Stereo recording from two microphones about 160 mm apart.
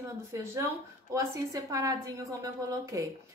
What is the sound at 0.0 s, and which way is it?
Speech, 15° right (ahead or behind).